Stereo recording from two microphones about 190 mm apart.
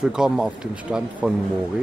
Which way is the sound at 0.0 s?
5° right (ahead or behind).